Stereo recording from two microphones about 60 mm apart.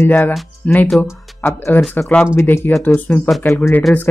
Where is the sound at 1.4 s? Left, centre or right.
Left.